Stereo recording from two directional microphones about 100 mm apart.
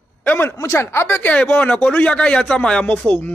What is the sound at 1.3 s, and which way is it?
Speech, 10° left (ahead or behind).